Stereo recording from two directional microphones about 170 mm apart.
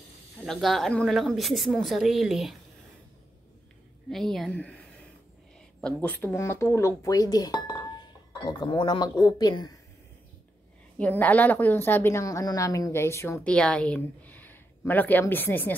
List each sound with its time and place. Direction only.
0.5 s a woman's voice: centre (ahead or behind)
4.1 s a woman's voice: centre (ahead or behind); by 9.8 s 20° left (ahead or behind)
11.0 s a woman's voice: 10° left (ahead or behind)